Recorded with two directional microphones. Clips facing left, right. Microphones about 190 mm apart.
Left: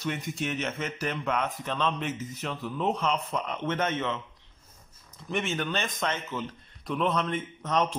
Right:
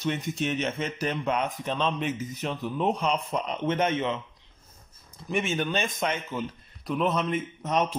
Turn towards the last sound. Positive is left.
turn(degrees=-10)  # may be behind; listen again after turning